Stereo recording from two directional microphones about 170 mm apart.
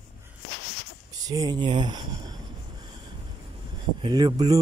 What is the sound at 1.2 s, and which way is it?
Speech, 20° right (ahead or behind).